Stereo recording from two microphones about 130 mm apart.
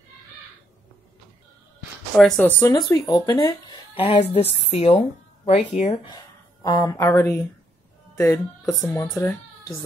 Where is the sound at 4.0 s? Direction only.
50° left (ahead or behind).